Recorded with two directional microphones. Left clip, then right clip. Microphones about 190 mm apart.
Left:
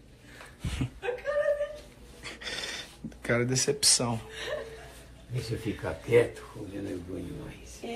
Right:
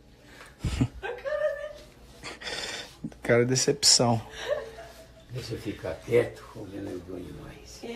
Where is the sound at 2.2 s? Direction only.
35° right (ahead or behind).